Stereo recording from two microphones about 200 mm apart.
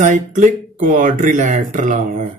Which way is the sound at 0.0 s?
40° right (ahead or behind).